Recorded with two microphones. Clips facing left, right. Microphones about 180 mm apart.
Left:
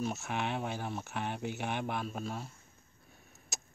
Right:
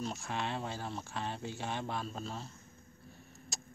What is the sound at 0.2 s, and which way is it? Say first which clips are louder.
Speech: left 2 dB; 20° left (ahead or behind).